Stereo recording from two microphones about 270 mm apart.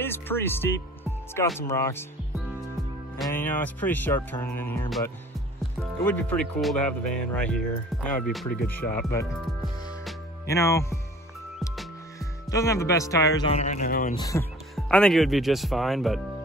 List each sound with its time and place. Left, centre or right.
0.0 s speech: centre
3.2 s speech: centre
10.5 s speech: centre
12.2 s speech: centre
13.5 s speech: left
14.1 s speech: centre